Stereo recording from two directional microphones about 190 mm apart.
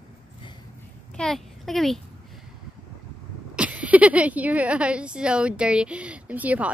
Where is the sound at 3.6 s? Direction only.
5° right (ahead or behind).